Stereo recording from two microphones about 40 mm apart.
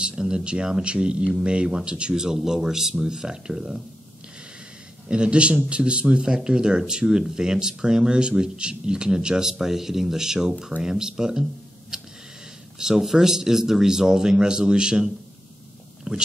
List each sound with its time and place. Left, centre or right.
0.0 s a sound: centre
0.4 s speech: right
5.0 s speech: right
11.9 s tick: centre
12.7 s speech: centre
16.1 s speech: right